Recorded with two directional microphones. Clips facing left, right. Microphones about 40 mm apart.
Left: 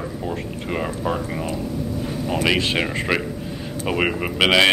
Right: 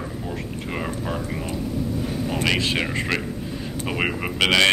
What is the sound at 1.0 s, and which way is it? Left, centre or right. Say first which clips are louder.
Speech: left 4 dB; centre.